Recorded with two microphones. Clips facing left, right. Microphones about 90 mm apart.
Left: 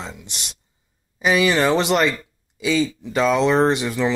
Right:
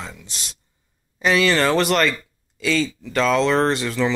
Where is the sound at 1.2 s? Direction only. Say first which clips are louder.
Even; 10° left (ahead or behind).